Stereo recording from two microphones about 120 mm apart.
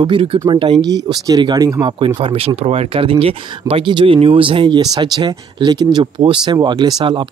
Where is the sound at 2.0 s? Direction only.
45° right (ahead or behind).